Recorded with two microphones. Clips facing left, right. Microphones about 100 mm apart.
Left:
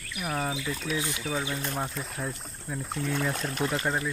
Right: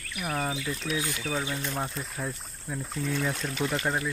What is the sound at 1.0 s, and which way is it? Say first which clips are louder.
Speech: even; 20° left (ahead or behind).